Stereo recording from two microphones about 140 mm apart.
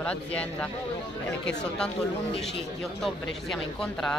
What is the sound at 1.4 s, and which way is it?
Speech, 5° left (ahead or behind).